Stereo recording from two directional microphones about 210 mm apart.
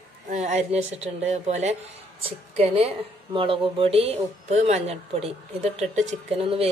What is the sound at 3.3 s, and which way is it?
Speech, 25° right (ahead or behind).